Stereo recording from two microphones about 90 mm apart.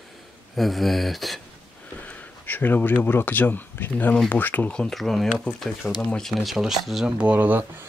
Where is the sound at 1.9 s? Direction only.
20° left (ahead or behind).